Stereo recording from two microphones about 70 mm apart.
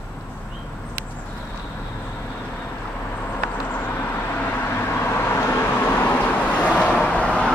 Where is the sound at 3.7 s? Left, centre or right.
Left.